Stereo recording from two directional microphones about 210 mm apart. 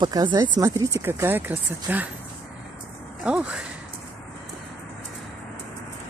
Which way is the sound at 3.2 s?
5° right (ahead or behind).